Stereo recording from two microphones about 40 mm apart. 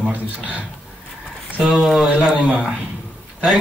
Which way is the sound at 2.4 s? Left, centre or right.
Right.